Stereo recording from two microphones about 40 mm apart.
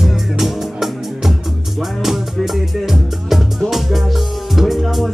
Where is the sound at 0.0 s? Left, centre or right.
Centre.